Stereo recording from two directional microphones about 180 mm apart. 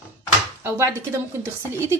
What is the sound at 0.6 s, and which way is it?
Speech, 15° right (ahead or behind).